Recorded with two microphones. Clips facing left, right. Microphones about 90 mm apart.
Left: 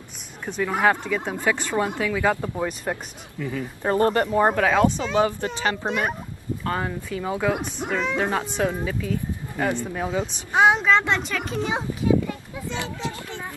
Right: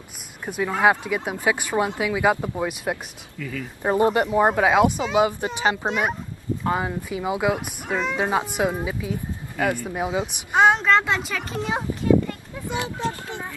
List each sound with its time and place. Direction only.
0.7 s speech: 10° right (ahead or behind)
3.3 s speech: 35° left (ahead or behind)
3.8 s speech: 10° right (ahead or behind)
5.9 s speech: 5° right (ahead or behind)
8.2 s speech: 15° right (ahead or behind)
10.5 s a child's voice: centre (ahead or behind)
12.6 s speech: 15° right (ahead or behind)